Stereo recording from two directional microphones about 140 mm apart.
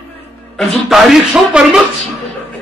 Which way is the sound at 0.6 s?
Centre (ahead or behind).